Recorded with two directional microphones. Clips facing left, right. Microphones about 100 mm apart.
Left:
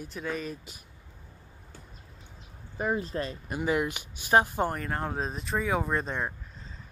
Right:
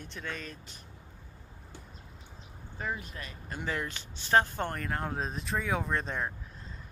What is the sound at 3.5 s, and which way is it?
Speech, 15° left (ahead or behind).